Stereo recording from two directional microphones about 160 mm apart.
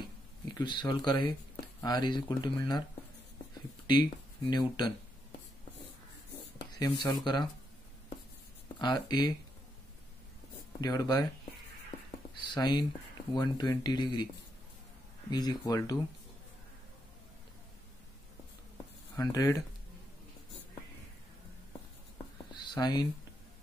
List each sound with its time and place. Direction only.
0.6 s speech: 30° left (ahead or behind)
3.8 s speech: 30° left (ahead or behind)
6.8 s speech: 25° left (ahead or behind)
8.7 s speech: 25° left (ahead or behind)
10.8 s speech: 25° left (ahead or behind)
12.4 s speech: 25° left (ahead or behind)
15.3 s speech: 25° left (ahead or behind)
19.1 s speech: 20° left (ahead or behind)
22.5 s a sound: 30° left (ahead or behind)